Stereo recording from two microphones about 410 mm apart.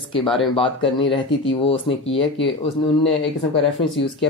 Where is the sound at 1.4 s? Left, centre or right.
Left.